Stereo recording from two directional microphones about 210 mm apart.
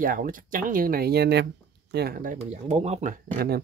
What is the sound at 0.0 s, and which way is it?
Speech, 40° right (ahead or behind).